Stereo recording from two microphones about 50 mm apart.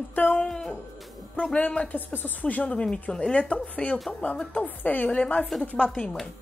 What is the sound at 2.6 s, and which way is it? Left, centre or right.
A woman's voice, left.